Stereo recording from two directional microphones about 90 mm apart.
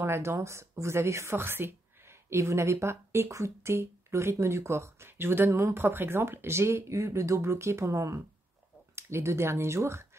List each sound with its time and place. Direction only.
0.0 s speech: 30° right (ahead or behind)